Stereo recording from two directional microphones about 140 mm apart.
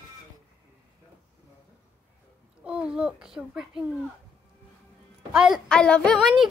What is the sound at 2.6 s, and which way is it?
A child's voice, 5° right (ahead or behind).